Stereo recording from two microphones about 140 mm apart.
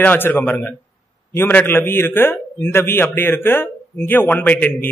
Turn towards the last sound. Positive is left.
turn(degrees=10)  # may be behind; listen again after turning